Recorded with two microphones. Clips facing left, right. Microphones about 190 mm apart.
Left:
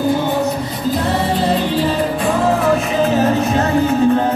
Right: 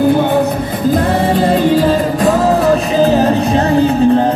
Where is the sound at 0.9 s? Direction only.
50° right (ahead or behind); by 4.2 s 35° right (ahead or behind).